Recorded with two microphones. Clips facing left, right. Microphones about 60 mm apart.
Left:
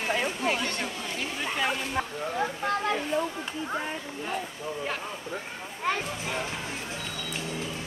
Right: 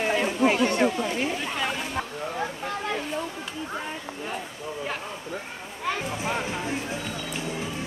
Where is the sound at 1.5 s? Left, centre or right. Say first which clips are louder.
Even; centre.